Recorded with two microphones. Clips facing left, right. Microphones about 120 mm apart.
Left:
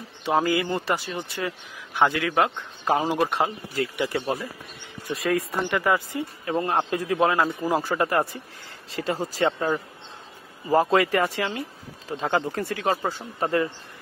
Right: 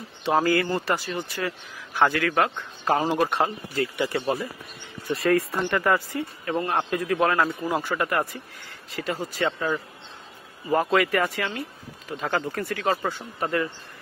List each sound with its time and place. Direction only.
0.2 s speech: 10° left (ahead or behind)
0.8 s speech: 25° left (ahead or behind)